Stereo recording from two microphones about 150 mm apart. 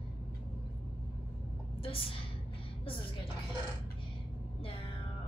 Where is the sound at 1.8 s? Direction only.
35° left (ahead or behind).